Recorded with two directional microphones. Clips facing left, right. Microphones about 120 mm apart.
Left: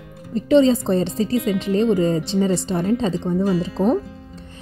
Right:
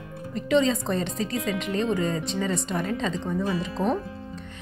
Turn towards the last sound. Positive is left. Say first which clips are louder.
# left 7 dB
turn(degrees=35)  # may be behind; listen again after turning